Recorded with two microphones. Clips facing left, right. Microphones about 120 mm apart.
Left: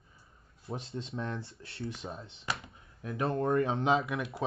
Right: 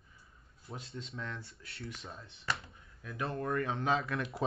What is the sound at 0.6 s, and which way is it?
Speech, 25° left (ahead or behind).